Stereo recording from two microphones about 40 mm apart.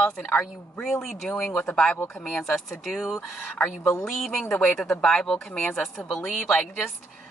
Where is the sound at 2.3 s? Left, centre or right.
Centre.